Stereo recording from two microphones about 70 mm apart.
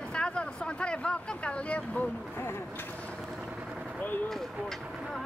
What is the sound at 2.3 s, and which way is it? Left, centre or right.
Speech, left.